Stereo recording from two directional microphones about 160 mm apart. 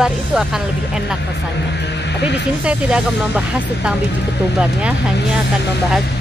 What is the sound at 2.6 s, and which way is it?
Speech, 5° right (ahead or behind).